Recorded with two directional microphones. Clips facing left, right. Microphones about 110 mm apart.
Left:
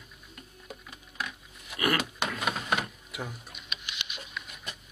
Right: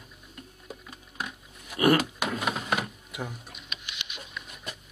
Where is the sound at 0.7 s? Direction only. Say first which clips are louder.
Right 1 dB; 25° right (ahead or behind).